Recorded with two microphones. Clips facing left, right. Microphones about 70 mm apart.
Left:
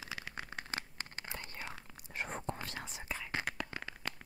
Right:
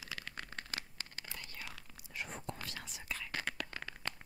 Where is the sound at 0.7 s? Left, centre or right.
Left.